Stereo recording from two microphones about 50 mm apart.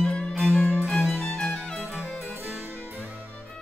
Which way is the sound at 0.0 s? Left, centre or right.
Centre.